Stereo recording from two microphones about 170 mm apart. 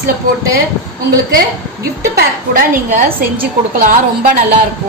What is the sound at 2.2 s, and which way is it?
Speech, 60° right (ahead or behind).